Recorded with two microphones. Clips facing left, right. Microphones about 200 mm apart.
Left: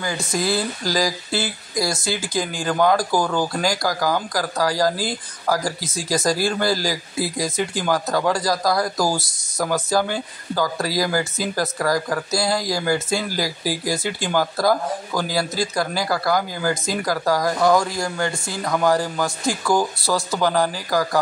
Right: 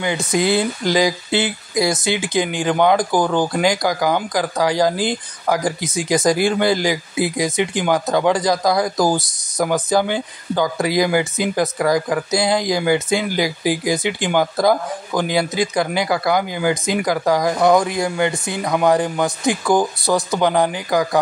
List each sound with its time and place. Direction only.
0.0 s speech: 20° right (ahead or behind)